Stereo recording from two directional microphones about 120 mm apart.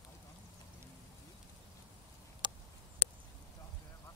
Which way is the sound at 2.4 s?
40° right (ahead or behind).